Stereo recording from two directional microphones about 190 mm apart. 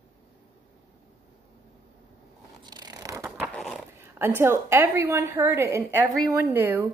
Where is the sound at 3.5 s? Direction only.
5° left (ahead or behind).